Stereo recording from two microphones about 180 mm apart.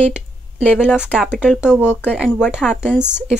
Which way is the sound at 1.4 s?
5° right (ahead or behind).